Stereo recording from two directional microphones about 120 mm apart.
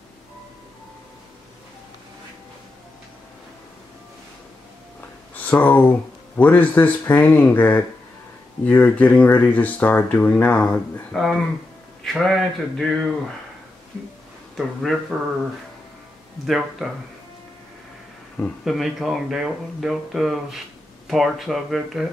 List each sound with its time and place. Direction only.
5.3 s speech: 15° left (ahead or behind)
14.6 s speech: centre (ahead or behind)
16.4 s speech: centre (ahead or behind)
18.6 s speech: centre (ahead or behind)